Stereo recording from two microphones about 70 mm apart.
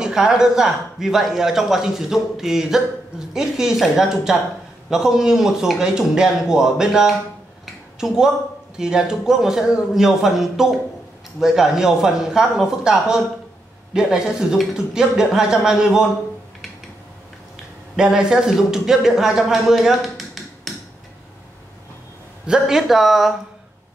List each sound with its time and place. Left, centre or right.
0.0 s a man's voice: centre
8.7 s a man's voice: centre
17.9 s speech: centre
22.5 s speech: centre